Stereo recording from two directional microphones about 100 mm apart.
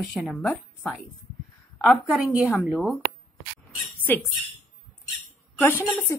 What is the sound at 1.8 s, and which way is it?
A woman's voice, 10° right (ahead or behind).